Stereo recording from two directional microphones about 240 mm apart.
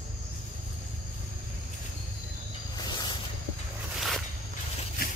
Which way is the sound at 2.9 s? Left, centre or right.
Centre.